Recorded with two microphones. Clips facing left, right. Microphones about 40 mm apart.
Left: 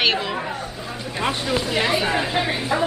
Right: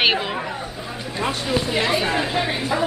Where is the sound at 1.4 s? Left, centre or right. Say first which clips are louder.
Right 1 dB; centre.